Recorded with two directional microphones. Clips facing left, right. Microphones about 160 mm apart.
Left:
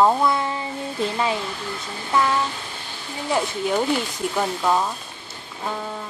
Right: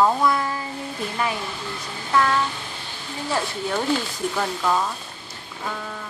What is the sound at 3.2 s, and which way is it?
Speech, 15° left (ahead or behind).